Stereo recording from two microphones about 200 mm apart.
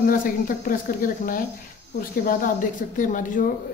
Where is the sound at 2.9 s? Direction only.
40° left (ahead or behind).